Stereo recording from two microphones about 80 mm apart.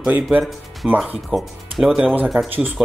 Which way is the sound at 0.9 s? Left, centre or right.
Centre.